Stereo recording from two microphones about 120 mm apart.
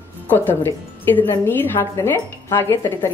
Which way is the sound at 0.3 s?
15° left (ahead or behind).